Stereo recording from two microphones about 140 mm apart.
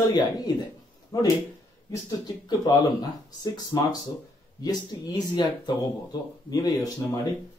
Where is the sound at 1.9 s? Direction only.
30° left (ahead or behind).